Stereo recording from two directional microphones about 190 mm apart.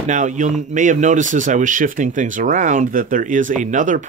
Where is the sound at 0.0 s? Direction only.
40° right (ahead or behind).